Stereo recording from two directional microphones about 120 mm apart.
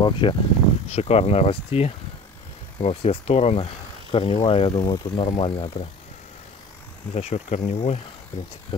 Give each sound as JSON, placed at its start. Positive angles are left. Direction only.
{"t": 0.0, "sound": "speech", "side_deg": 45}
{"t": 0.8, "sound": "speech", "side_deg": 60}
{"t": 4.7, "sound": "speech", "side_deg": 40}
{"t": 7.2, "sound": "speech", "side_deg": 65}